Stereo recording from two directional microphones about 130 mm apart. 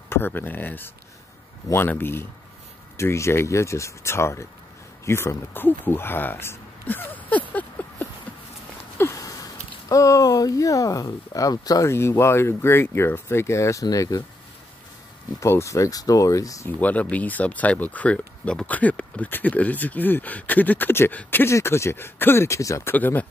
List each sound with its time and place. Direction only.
0.1 s speech: 15° left (ahead or behind)
15.4 s speech: 20° left (ahead or behind)
16.8 s speech: 10° left (ahead or behind)